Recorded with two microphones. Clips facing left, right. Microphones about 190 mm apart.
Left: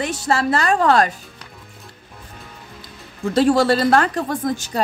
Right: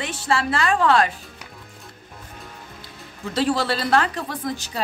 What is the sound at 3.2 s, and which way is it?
Speech, 45° left (ahead or behind).